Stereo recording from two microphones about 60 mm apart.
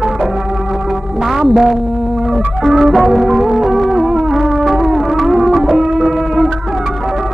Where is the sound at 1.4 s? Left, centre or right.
Centre.